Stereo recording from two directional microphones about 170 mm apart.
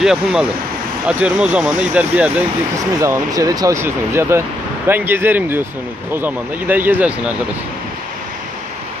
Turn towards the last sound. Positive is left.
turn(degrees=-10)  # may be behind; listen again after turning